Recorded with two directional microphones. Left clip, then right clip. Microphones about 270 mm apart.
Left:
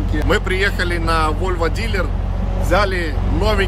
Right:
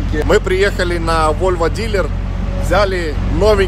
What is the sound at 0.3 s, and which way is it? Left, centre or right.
Speech, centre.